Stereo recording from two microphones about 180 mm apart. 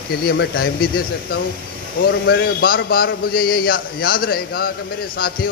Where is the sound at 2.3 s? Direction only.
65° left (ahead or behind).